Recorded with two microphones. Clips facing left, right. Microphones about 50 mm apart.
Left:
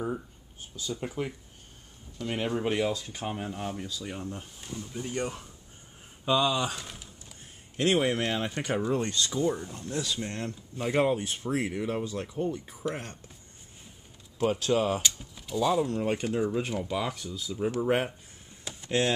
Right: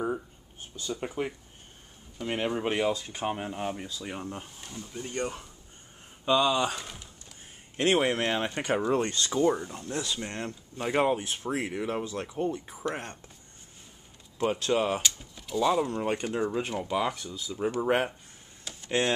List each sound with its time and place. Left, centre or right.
1.0 s speech: centre
4.6 s speech: centre
6.2 s a sound: centre
7.8 s speech: centre
12.5 s speech: centre
14.4 s speech: centre
14.7 s speech: centre
15.0 s speech: centre
18.6 s a sound: centre
18.9 s speech: centre